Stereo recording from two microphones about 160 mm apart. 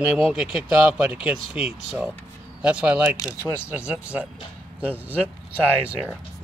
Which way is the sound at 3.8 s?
10° right (ahead or behind).